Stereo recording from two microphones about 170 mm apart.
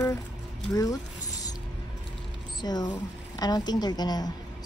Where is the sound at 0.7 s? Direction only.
20° left (ahead or behind).